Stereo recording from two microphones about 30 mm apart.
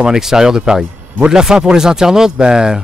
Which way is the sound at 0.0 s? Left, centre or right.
Centre.